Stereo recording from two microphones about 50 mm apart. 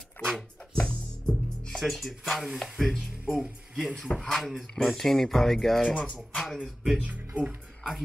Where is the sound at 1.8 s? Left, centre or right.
Centre.